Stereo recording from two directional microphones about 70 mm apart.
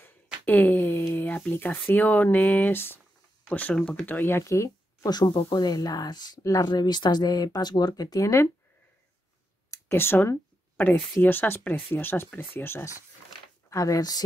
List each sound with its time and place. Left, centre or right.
0.0 s a sound: left
2.3 s speech: left
4.0 s speech: left
5.1 s speech: left
9.7 s a sound: left
10.8 s speech: left
13.7 s speech: left